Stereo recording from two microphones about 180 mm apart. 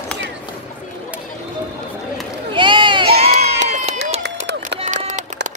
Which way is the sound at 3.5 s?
40° right (ahead or behind).